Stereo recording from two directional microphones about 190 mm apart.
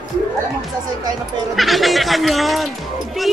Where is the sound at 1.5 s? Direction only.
Centre (ahead or behind).